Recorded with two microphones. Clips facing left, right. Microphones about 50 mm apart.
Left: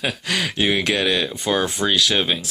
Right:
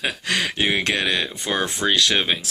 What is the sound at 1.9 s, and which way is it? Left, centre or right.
Speech, right.